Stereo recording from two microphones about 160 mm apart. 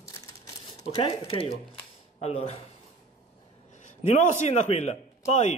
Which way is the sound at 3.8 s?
50° left (ahead or behind).